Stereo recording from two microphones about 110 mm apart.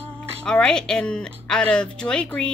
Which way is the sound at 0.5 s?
5° left (ahead or behind).